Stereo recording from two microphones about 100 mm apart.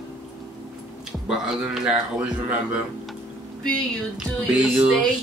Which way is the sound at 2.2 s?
15° right (ahead or behind).